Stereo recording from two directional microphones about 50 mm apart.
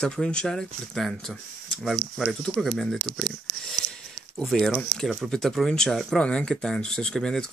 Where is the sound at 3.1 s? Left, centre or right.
Centre.